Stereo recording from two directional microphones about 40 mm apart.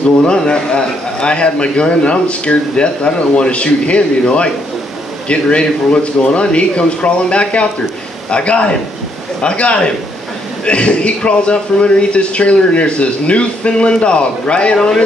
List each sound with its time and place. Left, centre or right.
0.3 s a man's voice: left